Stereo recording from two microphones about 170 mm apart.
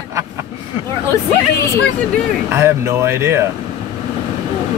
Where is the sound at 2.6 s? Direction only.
15° right (ahead or behind).